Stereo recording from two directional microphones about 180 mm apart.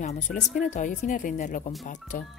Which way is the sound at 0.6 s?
45° left (ahead or behind).